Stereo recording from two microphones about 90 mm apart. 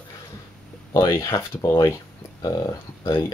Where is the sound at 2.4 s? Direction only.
45° left (ahead or behind).